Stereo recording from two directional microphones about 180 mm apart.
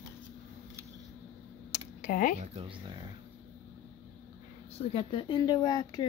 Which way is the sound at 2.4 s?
35° right (ahead or behind).